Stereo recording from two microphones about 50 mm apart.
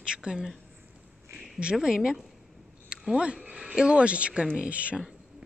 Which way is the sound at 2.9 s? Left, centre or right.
Centre.